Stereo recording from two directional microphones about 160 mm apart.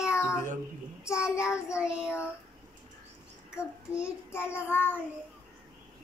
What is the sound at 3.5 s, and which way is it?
Child singing, 5° right (ahead or behind).